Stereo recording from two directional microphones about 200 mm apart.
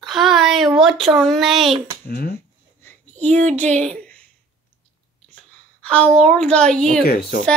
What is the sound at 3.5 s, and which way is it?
Speech, 5° left (ahead or behind).